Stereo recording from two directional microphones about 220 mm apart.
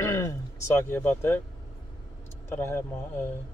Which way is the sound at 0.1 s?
15° left (ahead or behind).